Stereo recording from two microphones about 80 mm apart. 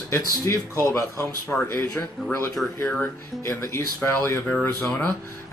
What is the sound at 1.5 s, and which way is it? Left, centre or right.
Speech, centre.